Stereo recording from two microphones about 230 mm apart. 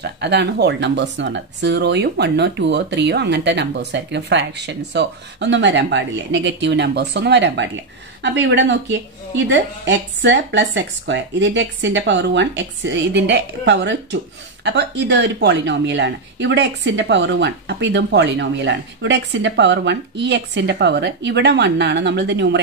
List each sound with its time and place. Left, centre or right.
0.0 s speech: right